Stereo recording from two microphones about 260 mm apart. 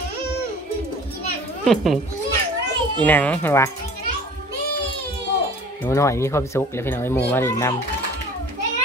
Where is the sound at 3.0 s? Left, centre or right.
Centre.